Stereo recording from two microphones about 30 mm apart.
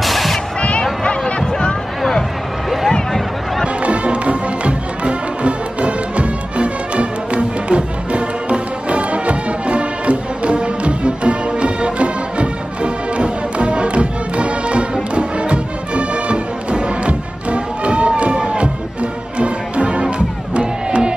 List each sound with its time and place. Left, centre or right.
0.0 s music: centre
0.6 s a sound: left
3.6 s music: right